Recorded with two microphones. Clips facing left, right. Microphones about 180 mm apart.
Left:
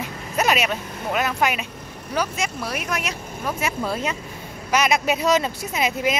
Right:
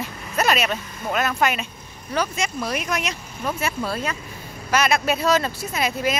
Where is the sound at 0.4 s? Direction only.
15° left (ahead or behind).